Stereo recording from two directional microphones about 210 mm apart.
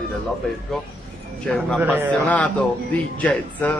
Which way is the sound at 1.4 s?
Centre (ahead or behind).